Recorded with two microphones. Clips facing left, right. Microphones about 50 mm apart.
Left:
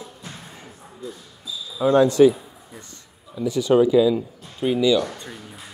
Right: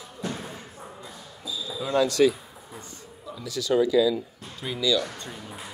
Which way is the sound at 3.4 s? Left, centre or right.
Left.